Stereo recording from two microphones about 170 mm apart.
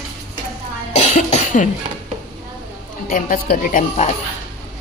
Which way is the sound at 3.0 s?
50° left (ahead or behind).